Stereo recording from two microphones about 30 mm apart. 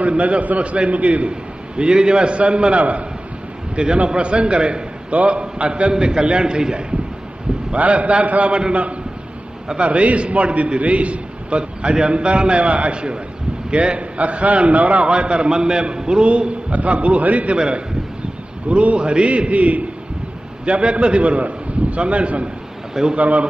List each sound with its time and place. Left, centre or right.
0.0 s a man's voice: right
1.8 s a man's voice: right
3.7 s a man's voice: right
5.4 s a man's voice: right
7.7 s a man's voice: right
9.8 s a man's voice: right
11.9 s a man's voice: right
12.9 s a man's voice: right
15.0 s a man's voice: right
16.3 s a man's voice: right
16.7 s a man's voice: right
17.6 s a man's voice: right
18.7 s a man's voice: right
20.6 s a man's voice: right